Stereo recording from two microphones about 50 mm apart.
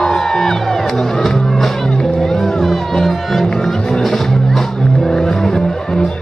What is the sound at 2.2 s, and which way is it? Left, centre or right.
Music, centre.